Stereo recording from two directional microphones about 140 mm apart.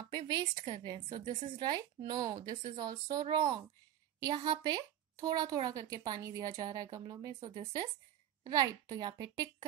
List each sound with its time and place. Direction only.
0.3 s a woman's voice: 30° right (ahead or behind)